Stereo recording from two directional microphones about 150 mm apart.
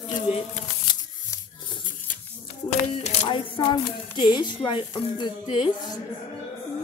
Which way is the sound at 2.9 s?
45° left (ahead or behind).